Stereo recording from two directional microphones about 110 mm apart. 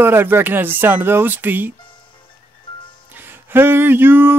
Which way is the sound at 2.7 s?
50° left (ahead or behind).